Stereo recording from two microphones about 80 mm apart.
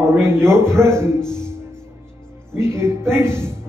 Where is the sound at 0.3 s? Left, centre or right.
Right.